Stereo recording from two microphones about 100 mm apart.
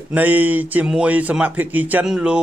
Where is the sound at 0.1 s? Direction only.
20° right (ahead or behind).